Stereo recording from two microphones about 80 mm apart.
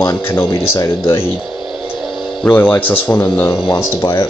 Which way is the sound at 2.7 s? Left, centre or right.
Left.